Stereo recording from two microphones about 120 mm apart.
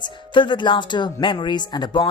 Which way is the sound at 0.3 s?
40° left (ahead or behind).